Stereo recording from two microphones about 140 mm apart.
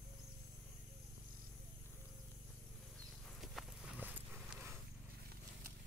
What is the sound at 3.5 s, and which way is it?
Clip-clop, 5° right (ahead or behind).